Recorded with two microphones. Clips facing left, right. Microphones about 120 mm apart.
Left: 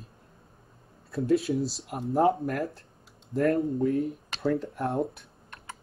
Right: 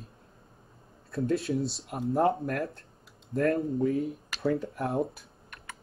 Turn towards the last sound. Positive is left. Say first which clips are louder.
# left 1 dB
turn(degrees=0)  # may be behind; listen again after turning